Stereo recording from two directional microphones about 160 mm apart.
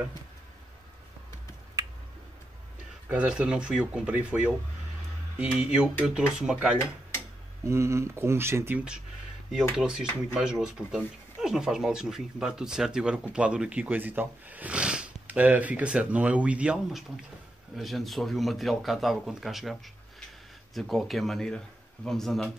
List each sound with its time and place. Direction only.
3.1 s speech: 5° right (ahead or behind)
5.4 s speech: 5° right (ahead or behind)
7.6 s speech: 15° right (ahead or behind); by 22.5 s centre (ahead or behind)